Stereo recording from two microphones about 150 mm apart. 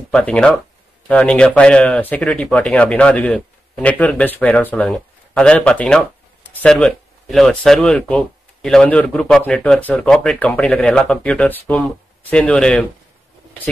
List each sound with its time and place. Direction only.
0.1 s speech: 5° left (ahead or behind)